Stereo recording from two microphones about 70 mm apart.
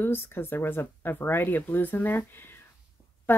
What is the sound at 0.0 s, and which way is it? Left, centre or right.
Speech, left.